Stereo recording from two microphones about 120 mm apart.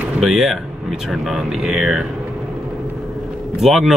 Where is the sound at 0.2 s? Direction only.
Centre (ahead or behind).